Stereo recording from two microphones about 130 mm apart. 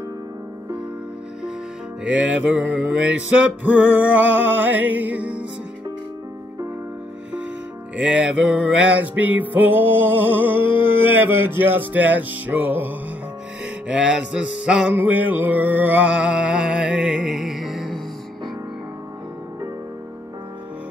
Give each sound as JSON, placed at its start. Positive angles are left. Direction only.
{"t": 2.0, "sound": "music", "side_deg": -10}
{"t": 7.9, "sound": "music", "side_deg": -5}